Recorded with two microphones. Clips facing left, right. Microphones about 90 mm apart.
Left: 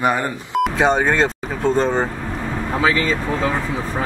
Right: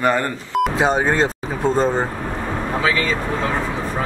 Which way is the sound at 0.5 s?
5° right (ahead or behind).